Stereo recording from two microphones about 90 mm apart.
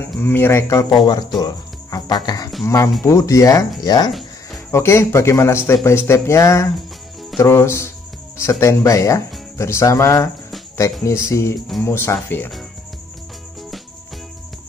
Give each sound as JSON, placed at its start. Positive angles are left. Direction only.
{"t": 0.2, "sound": "speech", "side_deg": 25}
{"t": 0.8, "sound": "speech", "side_deg": 55}
{"t": 1.4, "sound": "music", "side_deg": 45}
{"t": 2.6, "sound": "speech", "side_deg": 35}
{"t": 4.1, "sound": "music", "side_deg": 0}
{"t": 4.6, "sound": "speech", "side_deg": 30}